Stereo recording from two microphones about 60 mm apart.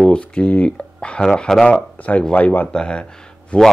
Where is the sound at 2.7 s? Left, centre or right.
Centre.